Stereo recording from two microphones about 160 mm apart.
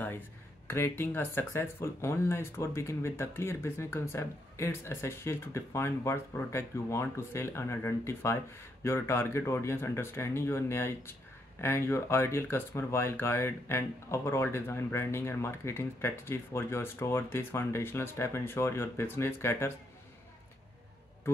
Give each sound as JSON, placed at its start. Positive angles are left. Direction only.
{"t": 0.7, "sound": "speech", "side_deg": 15}